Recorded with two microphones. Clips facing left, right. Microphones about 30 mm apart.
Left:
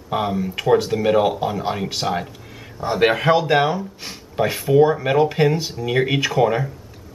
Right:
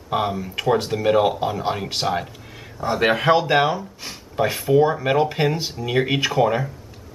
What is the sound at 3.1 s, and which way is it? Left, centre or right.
Speech, centre.